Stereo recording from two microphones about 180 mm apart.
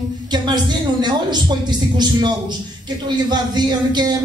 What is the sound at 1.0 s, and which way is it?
Speech, 25° right (ahead or behind).